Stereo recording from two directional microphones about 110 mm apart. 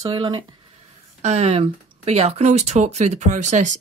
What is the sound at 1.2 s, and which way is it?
Speech, 85° right.